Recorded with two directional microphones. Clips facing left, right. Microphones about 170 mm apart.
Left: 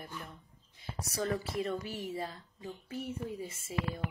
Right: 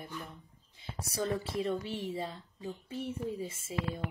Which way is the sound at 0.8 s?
30° right (ahead or behind).